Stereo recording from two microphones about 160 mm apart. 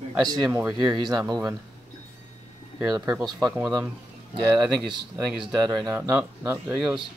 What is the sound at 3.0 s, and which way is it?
Speech, 5° right (ahead or behind).